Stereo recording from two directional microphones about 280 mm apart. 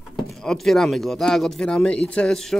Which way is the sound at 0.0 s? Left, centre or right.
Centre.